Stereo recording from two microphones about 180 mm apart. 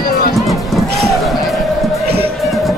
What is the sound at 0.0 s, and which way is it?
Music, 55° left (ahead or behind).